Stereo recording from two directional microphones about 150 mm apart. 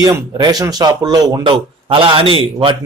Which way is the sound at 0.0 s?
25° right (ahead or behind).